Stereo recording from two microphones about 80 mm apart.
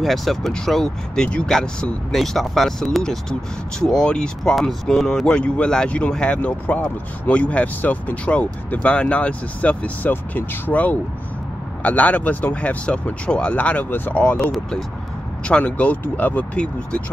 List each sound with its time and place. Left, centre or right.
0.0 s speech: centre; by 14.3 s left
15.4 s speech: centre